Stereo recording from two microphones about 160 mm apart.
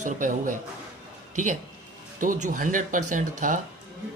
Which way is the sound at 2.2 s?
55° right (ahead or behind).